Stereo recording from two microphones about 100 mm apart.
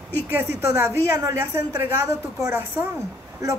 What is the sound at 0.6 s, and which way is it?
A woman's voice, 30° right (ahead or behind).